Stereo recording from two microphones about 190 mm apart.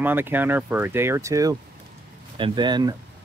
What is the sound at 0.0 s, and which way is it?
Speech, 10° right (ahead or behind).